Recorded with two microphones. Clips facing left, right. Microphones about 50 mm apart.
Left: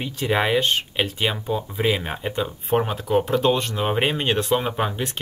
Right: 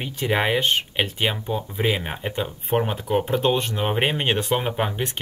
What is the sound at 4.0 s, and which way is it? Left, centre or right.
Speech, centre.